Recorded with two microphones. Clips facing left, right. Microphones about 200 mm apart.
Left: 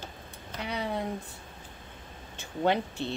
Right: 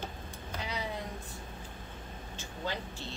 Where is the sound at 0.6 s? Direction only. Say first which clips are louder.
Left 6 dB; 60° left (ahead or behind).